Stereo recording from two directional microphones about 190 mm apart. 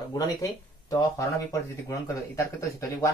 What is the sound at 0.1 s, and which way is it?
Speech, 20° left (ahead or behind).